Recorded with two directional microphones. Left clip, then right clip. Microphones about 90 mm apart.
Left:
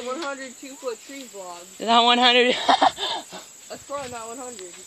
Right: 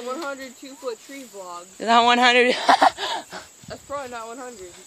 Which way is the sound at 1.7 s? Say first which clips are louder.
Right 1 dB; 70° right (ahead or behind).